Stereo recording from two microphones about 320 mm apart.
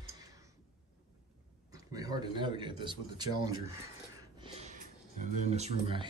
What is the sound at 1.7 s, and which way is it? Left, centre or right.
Speech, centre.